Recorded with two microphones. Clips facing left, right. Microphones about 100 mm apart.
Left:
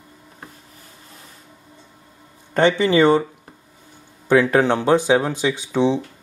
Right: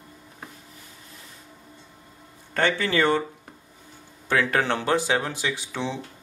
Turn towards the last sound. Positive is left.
turn(degrees=15)  # may be behind; listen again after turning